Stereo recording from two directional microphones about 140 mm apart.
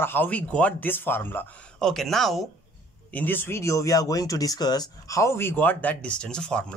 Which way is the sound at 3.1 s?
15° left (ahead or behind).